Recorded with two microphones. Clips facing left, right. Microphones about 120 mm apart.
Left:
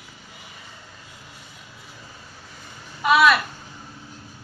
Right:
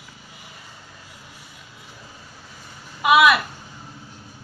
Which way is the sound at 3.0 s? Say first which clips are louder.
Right 1 dB; 15° right (ahead or behind).